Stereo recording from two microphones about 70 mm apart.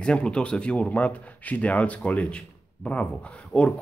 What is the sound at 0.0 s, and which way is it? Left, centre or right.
Speech, centre.